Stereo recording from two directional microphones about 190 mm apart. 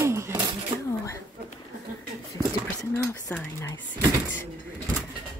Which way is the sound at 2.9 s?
15° left (ahead or behind).